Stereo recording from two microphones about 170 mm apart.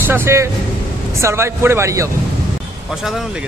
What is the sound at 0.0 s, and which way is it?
Speech, 15° right (ahead or behind).